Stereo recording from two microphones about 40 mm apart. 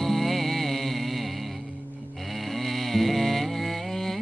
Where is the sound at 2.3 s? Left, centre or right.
Centre.